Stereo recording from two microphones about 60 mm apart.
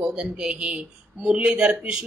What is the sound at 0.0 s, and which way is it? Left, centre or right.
Speech, centre.